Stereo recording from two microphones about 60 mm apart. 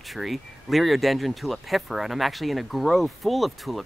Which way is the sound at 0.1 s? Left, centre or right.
Centre.